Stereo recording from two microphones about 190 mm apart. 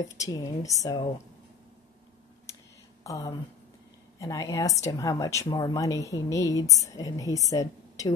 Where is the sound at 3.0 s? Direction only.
20° left (ahead or behind).